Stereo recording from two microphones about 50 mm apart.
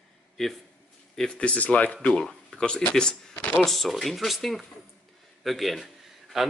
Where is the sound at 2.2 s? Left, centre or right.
Centre.